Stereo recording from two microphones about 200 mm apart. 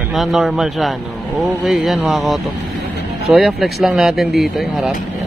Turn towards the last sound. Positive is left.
turn(degrees=0)  # may be behind; listen again after turning